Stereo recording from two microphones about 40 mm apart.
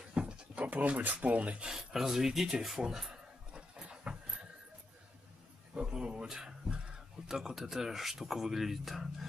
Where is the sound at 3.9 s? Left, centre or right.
Right.